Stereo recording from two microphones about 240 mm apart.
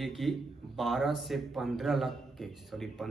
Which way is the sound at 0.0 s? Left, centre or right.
Centre.